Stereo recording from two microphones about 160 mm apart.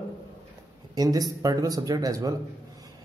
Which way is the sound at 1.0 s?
25° right (ahead or behind).